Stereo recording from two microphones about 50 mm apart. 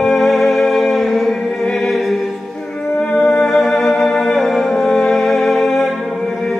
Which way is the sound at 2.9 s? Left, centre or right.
Centre.